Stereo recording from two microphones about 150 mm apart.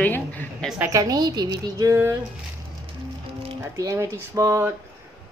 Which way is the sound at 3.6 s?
20° right (ahead or behind).